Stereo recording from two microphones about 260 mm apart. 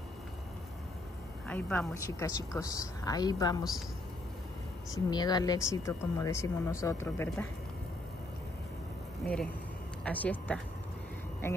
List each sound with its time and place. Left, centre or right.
1.5 s speech: centre
4.9 s speech: centre
9.2 s speech: centre